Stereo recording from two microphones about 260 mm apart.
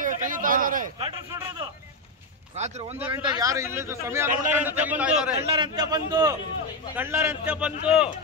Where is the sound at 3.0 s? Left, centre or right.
Centre.